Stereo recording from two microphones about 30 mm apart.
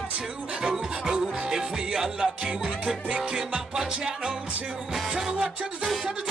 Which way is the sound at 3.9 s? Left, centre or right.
Right.